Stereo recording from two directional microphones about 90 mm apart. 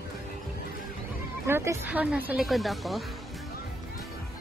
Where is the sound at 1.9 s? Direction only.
15° right (ahead or behind).